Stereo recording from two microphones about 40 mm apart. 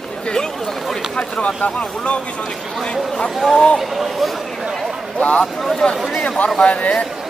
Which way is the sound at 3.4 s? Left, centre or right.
Centre.